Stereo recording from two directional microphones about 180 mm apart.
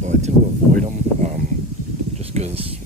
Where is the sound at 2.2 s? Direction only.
35° right (ahead or behind).